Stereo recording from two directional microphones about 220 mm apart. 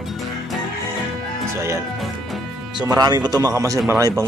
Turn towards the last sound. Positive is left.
turn(degrees=-15)  # may be behind; listen again after turning